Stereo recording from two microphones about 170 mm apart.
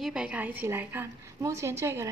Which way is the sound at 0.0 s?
5° right (ahead or behind).